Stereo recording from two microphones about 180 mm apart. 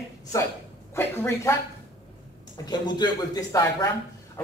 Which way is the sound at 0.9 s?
15° left (ahead or behind).